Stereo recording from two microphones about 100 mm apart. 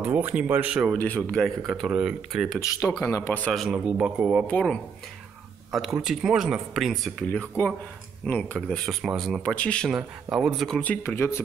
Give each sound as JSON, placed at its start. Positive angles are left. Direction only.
{"t": 0.0, "sound": "speech", "side_deg": -15}
{"t": 0.9, "sound": "speech", "side_deg": 15}
{"t": 1.7, "sound": "speech", "side_deg": -5}
{"t": 3.0, "sound": "speech", "side_deg": 30}
{"t": 3.5, "sound": "speech", "side_deg": -5}
{"t": 4.5, "sound": "speech", "side_deg": 10}
{"t": 5.7, "sound": "speech", "side_deg": -5}
{"t": 7.3, "sound": "speech", "side_deg": 15}
{"t": 9.8, "sound": "speech", "side_deg": -5}
{"t": 10.8, "sound": "speech", "side_deg": 20}